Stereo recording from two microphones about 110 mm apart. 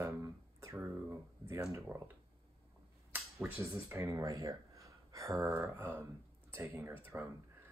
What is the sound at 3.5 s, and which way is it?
Speech, 25° right (ahead or behind).